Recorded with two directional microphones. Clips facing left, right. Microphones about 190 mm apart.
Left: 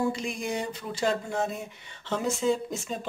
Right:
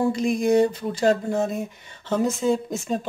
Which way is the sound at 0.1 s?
45° right (ahead or behind).